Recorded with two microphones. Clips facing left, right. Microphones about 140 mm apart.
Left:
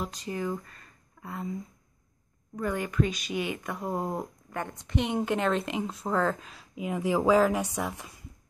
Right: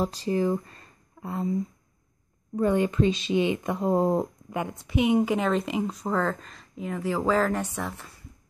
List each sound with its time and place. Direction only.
0.0 s speech: 35° right (ahead or behind)
2.5 s speech: 25° right (ahead or behind)
4.8 s speech: 5° right (ahead or behind); by 8.1 s 10° left (ahead or behind)